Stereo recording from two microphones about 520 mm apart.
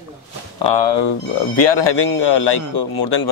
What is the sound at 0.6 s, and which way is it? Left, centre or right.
A man's voice, left.